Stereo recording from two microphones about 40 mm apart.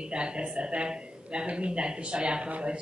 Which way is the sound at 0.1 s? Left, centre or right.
Right.